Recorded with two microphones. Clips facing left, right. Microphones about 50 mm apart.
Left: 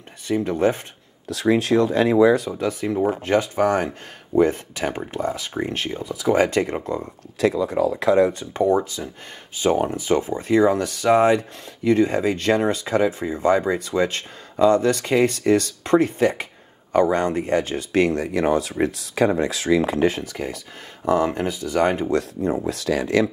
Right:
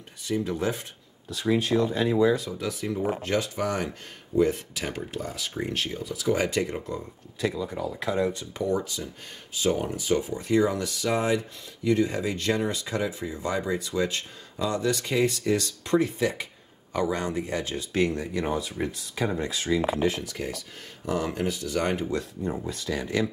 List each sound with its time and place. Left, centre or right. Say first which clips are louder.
0.4 s speech: left 9 dB; left
1.3 s speech: left 6 dB; left
2.4 s speech: left 7 dB; left
4.7 s speech: left 7 dB; left
6.9 s speech: left 7 dB; left
8.3 s speech: left 8 dB; left
20.2 s speech: left 4 dB; left
21.0 s speech: left 8 dB; left
22.0 s speech: left 7 dB; left